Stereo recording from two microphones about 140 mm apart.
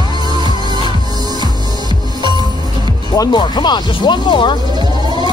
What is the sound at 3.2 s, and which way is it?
Speech, 30° left (ahead or behind).